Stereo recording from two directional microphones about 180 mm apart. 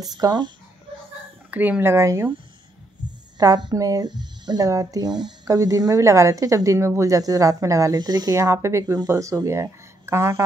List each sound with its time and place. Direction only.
0.0 s speech: 20° right (ahead or behind)
1.5 s speech: 10° right (ahead or behind)
3.0 s a sound: 25° right (ahead or behind)
3.3 s speech: 20° right (ahead or behind)